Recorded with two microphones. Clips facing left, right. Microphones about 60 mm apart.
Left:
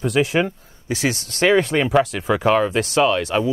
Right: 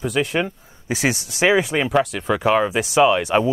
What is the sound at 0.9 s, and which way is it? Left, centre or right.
Speech, centre.